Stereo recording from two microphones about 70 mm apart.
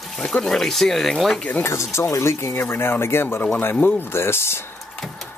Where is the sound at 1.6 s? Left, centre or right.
Left.